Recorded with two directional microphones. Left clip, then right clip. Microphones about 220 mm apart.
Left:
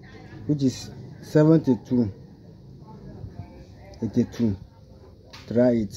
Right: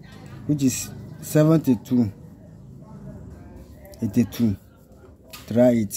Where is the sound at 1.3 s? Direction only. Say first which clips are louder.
Even; 20° right (ahead or behind).